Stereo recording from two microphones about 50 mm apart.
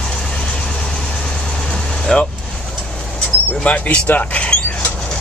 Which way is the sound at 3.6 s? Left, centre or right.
Left.